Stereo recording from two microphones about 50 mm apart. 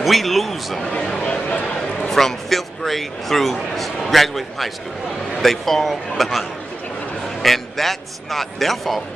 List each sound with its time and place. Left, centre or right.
0.0 s a man's voice: centre
1.2 s speech: centre
1.8 s a sound: centre
3.5 s a man's voice: centre
7.4 s a man's voice: centre